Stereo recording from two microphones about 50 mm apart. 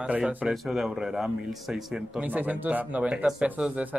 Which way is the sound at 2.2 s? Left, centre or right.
Right.